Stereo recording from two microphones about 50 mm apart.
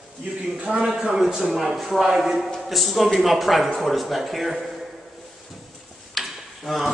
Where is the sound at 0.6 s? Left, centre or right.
Right.